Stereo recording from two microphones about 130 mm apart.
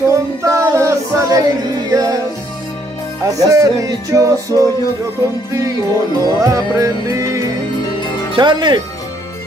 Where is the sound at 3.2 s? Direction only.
25° right (ahead or behind).